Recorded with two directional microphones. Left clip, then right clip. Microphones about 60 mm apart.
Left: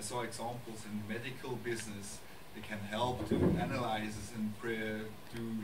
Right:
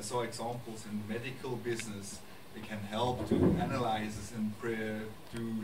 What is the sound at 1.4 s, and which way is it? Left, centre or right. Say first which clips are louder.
Speech: right 3 dB; centre.